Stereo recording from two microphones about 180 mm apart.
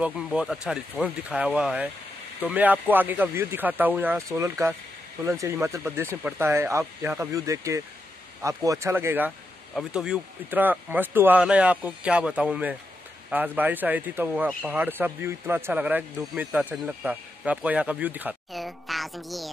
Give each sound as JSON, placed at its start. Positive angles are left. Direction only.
{"t": 0.0, "sound": "speech", "side_deg": -5}